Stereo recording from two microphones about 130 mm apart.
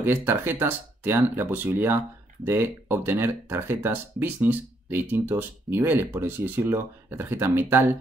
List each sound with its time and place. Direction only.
0.0 s speech: 15° right (ahead or behind)